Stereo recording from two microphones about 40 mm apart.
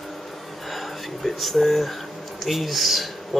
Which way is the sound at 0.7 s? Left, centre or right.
Centre.